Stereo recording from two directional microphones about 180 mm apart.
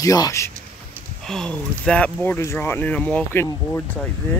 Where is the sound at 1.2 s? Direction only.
5° left (ahead or behind).